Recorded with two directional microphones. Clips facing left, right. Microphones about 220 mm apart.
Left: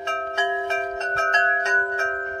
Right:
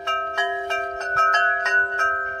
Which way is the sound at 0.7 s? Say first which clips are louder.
Left 1 dB; 30° left (ahead or behind).